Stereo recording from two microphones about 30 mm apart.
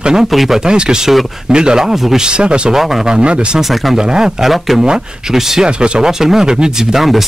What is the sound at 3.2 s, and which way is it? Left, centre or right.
Speech, right.